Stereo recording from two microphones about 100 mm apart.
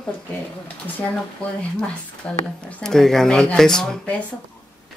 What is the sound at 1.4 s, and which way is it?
A woman's voice, 10° left (ahead or behind).